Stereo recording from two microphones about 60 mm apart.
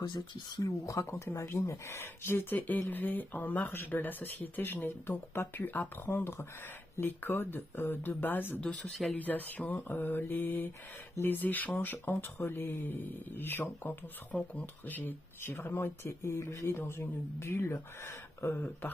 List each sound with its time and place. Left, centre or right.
0.6 s speech: left
1.2 s speech: left
2.5 s speech: left
8.5 s speech: left
14.3 s speech: left